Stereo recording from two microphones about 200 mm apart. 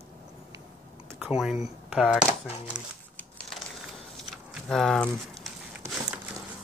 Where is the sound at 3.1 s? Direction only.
Centre (ahead or behind).